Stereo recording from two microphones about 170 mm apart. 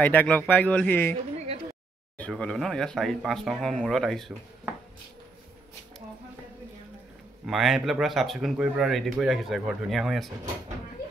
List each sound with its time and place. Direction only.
0.0 s speech: 10° left (ahead or behind)
1.1 s a sound: 35° right (ahead or behind)
2.1 s speech: 5° left (ahead or behind)
7.4 s speech: centre (ahead or behind)